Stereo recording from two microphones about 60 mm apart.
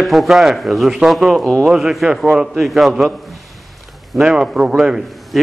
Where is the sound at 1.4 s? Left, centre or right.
Centre.